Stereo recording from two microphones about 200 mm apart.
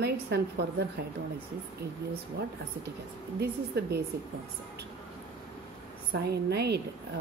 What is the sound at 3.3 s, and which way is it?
Speech, 55° right (ahead or behind).